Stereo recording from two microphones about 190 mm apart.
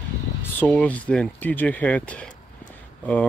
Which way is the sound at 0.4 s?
10° left (ahead or behind).